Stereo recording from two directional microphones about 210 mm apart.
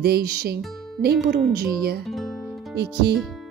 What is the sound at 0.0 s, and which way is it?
Speech, 50° right (ahead or behind).